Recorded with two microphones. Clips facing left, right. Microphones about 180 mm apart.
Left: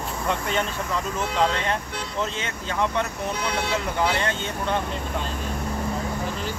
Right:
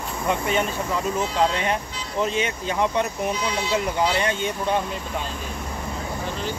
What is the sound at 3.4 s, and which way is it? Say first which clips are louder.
Speech: right 1 dB; 60° left (ahead or behind).